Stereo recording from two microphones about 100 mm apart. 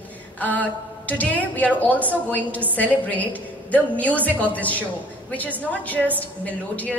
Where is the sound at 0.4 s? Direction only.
15° left (ahead or behind).